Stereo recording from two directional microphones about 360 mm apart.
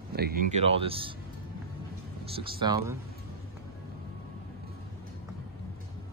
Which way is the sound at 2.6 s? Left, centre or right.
Centre.